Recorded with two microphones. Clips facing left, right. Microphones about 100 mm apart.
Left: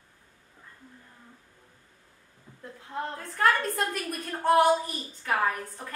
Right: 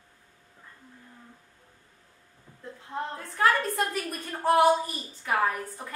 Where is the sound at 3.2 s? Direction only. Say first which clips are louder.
Even; centre (ahead or behind).